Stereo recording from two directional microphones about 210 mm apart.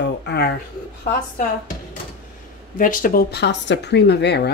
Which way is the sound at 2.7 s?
40° left (ahead or behind).